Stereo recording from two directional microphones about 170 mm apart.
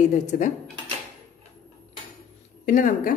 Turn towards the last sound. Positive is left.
turn(degrees=50)  # may be behind; listen again after turning